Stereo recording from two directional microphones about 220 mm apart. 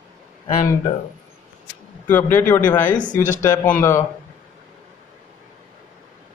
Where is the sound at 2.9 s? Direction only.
20° left (ahead or behind).